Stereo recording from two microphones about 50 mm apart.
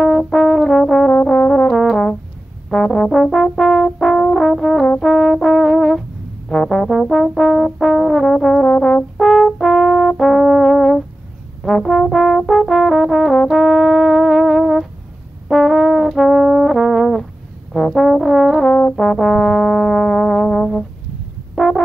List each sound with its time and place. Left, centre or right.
0.0 s brass instrument: centre
8.6 s brass instrument: centre
9.1 s brass instrument: centre